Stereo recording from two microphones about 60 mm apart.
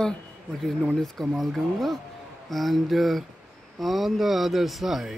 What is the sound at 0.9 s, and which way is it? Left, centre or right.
Speech, centre.